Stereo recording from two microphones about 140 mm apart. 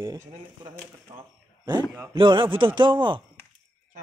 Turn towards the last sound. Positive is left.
turn(degrees=-35)  # may be behind; listen again after turning